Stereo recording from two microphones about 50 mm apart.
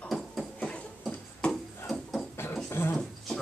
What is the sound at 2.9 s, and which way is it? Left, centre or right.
Wild animals, centre.